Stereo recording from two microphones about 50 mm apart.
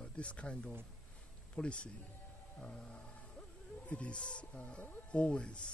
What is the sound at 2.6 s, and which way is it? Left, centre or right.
Wild animals, centre.